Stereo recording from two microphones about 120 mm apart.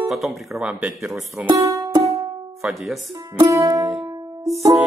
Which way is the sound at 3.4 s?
30° right (ahead or behind).